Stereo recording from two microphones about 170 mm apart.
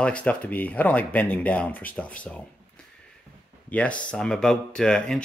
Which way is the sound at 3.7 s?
5° left (ahead or behind).